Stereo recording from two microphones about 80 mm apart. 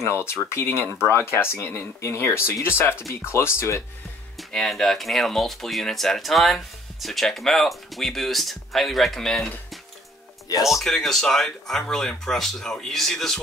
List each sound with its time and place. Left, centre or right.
0.0 s speech: left
4.4 s speech: centre
10.7 s speech: centre